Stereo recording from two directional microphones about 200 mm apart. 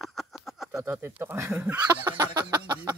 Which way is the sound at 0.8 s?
15° right (ahead or behind).